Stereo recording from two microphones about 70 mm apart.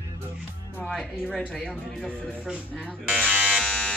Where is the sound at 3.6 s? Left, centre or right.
Centre.